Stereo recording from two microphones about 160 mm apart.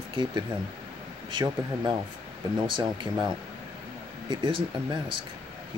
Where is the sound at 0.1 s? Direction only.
30° right (ahead or behind).